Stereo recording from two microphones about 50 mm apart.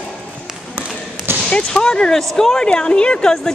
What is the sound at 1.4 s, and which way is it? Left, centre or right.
Speech, centre.